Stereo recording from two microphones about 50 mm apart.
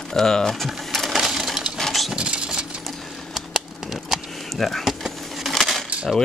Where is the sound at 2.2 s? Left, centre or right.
Centre.